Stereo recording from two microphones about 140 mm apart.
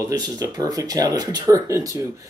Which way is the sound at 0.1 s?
30° right (ahead or behind).